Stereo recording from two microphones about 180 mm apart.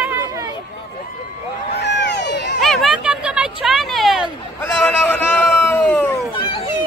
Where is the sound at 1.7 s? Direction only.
70° left (ahead or behind).